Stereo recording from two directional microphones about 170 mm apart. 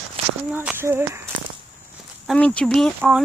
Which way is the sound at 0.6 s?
15° right (ahead or behind).